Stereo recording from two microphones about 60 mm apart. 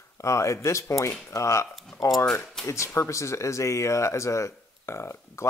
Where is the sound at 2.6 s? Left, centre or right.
Centre.